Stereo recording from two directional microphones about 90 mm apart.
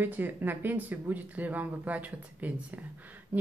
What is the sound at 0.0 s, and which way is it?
Speech, 20° right (ahead or behind).